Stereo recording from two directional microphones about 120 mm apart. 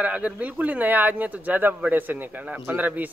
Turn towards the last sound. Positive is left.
turn(degrees=-15)  # may be behind; listen again after turning